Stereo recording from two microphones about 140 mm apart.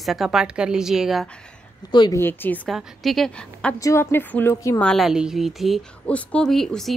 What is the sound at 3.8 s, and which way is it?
Speech, 20° left (ahead or behind).